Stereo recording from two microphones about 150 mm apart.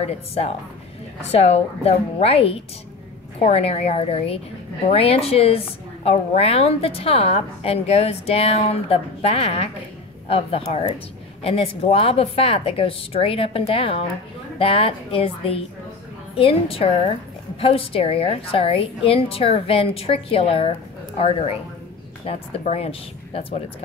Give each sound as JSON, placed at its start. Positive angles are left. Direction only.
{"t": 0.0, "sound": "a woman's voice", "side_deg": 45}